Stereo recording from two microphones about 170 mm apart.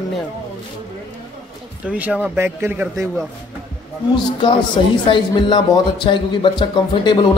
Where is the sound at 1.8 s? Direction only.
5° right (ahead or behind).